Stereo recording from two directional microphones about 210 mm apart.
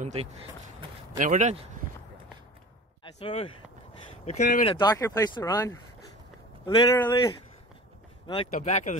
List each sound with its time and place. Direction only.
0.0 s speech: 30° right (ahead or behind)
3.0 s speech: 25° left (ahead or behind)
4.3 s speech: 40° left (ahead or behind)
4.6 s speech: 20° left (ahead or behind); by 8.9 s 35° left (ahead or behind)